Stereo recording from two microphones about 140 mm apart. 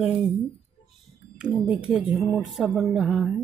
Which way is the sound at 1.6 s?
10° right (ahead or behind).